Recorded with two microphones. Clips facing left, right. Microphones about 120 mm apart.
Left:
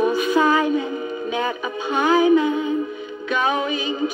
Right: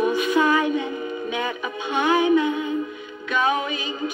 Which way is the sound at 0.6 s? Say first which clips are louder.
Left 2 dB; 5° left (ahead or behind).